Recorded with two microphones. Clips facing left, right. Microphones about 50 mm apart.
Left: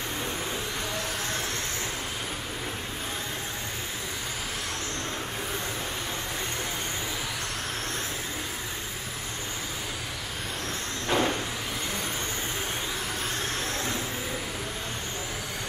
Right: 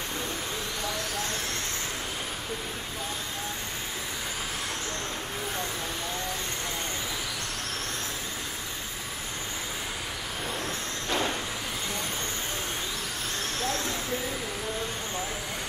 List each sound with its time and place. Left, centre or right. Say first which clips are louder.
11.1 s vehicle: left 4 dB; centre